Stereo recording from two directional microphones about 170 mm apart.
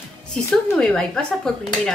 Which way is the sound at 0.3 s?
5° left (ahead or behind).